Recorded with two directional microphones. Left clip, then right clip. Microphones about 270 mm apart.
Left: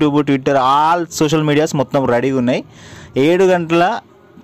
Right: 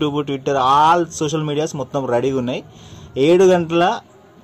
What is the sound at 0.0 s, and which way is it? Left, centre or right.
Speech, left.